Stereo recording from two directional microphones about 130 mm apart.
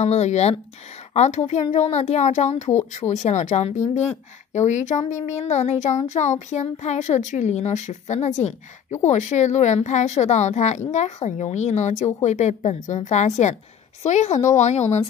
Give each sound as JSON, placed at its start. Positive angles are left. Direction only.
{"t": 0.0, "sound": "a woman's voice", "side_deg": 55}
{"t": 2.9, "sound": "speech", "side_deg": 70}